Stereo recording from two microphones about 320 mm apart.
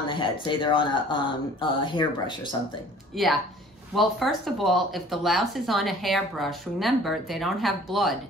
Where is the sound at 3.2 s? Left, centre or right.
Centre.